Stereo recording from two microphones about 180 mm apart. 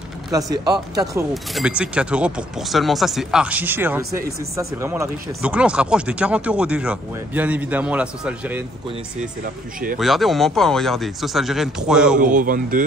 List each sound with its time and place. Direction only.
0.5 s speech: 20° right (ahead or behind)
1.3 s speech: centre (ahead or behind)
9.9 s speech: centre (ahead or behind)
12.2 s speech: 45° right (ahead or behind)